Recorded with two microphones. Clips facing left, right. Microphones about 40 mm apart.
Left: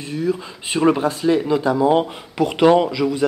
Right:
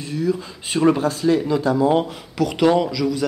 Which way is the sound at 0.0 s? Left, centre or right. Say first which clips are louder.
Even; centre.